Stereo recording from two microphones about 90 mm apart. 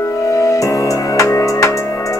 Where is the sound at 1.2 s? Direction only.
35° left (ahead or behind).